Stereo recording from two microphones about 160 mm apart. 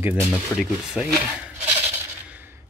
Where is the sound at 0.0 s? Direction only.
5° right (ahead or behind).